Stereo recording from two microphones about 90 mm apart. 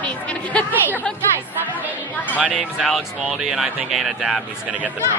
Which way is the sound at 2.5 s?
Centre (ahead or behind).